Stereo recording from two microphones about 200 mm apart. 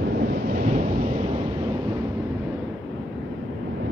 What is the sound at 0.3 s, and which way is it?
Thunder, 50° right (ahead or behind).